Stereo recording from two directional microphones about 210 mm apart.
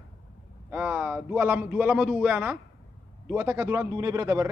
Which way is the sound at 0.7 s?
10° right (ahead or behind).